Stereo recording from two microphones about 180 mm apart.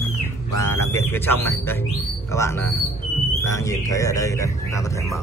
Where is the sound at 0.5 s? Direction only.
15° left (ahead or behind).